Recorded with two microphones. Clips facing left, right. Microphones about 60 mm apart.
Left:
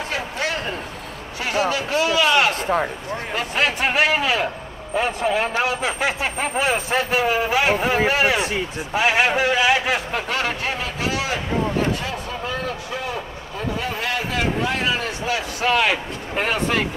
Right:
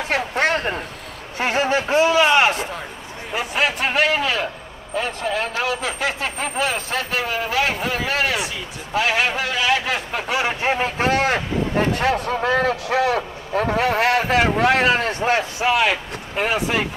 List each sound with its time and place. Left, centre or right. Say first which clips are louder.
0.1 s a sound: right 7 dB; right
1.4 s a man's voice: right 2 dB; right
2.5 s a man's voice: left 6 dB; left
3.3 s speech: right 1 dB; centre
8.4 s speech: left 4 dB; left
8.9 s speech: left 1 dB; centre
10.1 s speech: right 1 dB; centre
10.6 s speech: right 5 dB; right
15.6 s speech: left 2 dB; centre